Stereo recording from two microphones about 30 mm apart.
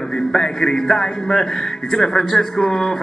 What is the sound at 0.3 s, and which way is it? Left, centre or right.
A man's voice, centre.